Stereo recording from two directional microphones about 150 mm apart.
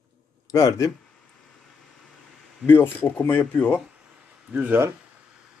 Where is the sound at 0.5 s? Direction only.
20° left (ahead or behind).